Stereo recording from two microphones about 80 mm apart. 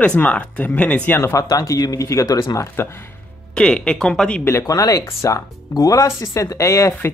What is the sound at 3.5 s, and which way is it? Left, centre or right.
Speech, centre.